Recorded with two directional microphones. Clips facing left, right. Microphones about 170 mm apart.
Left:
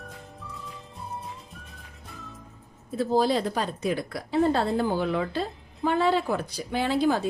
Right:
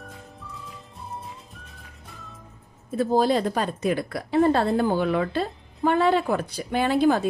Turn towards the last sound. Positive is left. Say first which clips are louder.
# right 3 dB
turn(degrees=-55)  # may be behind; listen again after turning